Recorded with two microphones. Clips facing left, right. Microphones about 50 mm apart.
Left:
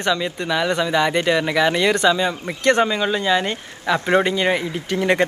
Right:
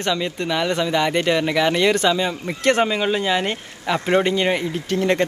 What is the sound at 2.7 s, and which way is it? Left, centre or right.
Speech, centre.